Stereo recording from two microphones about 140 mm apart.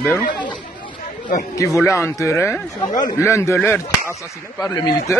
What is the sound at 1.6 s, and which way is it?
Speech, 20° left (ahead or behind).